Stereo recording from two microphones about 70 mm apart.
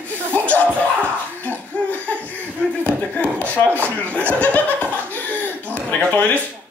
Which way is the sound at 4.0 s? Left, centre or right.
Centre.